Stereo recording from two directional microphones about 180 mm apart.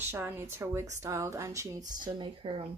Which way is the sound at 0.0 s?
10° right (ahead or behind).